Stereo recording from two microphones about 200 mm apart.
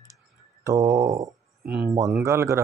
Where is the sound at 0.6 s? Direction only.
15° right (ahead or behind).